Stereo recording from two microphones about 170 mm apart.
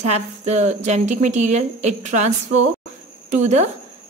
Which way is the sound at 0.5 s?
40° right (ahead or behind).